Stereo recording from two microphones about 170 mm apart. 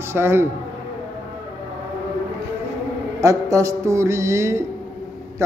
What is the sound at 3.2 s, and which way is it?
Speech, 20° right (ahead or behind).